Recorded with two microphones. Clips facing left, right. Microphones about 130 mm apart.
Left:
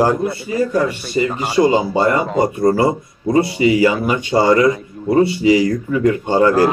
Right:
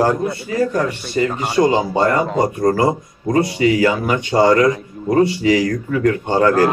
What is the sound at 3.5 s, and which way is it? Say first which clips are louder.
Speech: left 1 dB; 15° left (ahead or behind).